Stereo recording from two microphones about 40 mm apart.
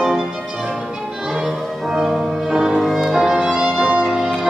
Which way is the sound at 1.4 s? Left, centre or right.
Centre.